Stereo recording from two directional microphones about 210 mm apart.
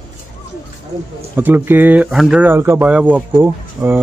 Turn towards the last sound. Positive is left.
turn(degrees=-10)  # may be behind; listen again after turning